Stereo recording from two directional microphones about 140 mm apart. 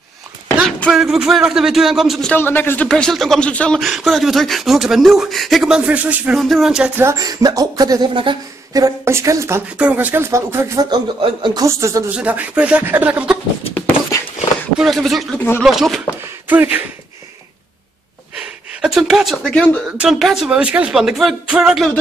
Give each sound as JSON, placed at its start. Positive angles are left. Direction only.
{"t": 0.7, "sound": "a sound", "side_deg": 5}
{"t": 1.0, "sound": "speech", "side_deg": -5}
{"t": 2.3, "sound": "speech", "side_deg": 15}
{"t": 2.9, "sound": "speech", "side_deg": 5}
{"t": 7.0, "sound": "speech", "side_deg": -25}
{"t": 9.8, "sound": "a man's voice", "side_deg": -10}
{"t": 10.9, "sound": "a man's voice", "side_deg": -35}
{"t": 11.6, "sound": "speech", "side_deg": -20}
{"t": 12.2, "sound": "a man's voice", "side_deg": -10}
{"t": 13.7, "sound": "a sound", "side_deg": 15}
{"t": 14.8, "sound": "speech", "side_deg": 0}
{"t": 16.4, "sound": "a sound", "side_deg": -10}
{"t": 18.7, "sound": "speech", "side_deg": -5}